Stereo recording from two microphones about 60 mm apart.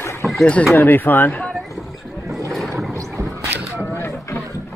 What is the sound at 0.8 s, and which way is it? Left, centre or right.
Speech, left.